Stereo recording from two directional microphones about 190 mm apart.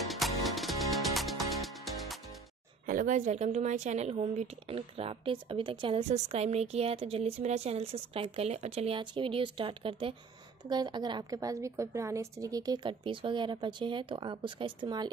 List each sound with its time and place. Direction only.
0.1 s music: centre (ahead or behind)
2.9 s a woman's voice: 40° right (ahead or behind); by 15.0 s 25° right (ahead or behind)